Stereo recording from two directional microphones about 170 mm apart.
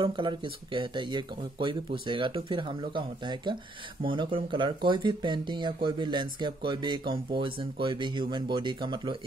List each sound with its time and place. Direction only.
0.0 s speech: 30° right (ahead or behind)